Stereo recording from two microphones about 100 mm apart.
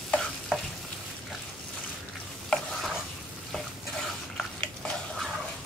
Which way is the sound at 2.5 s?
10° left (ahead or behind).